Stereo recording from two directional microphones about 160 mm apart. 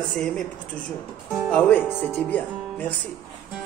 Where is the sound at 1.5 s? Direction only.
10° left (ahead or behind).